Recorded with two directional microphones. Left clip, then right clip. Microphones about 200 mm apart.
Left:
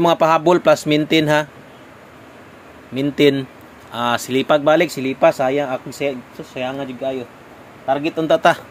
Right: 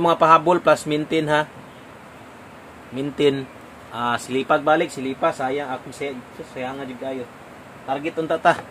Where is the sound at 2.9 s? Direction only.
25° left (ahead or behind).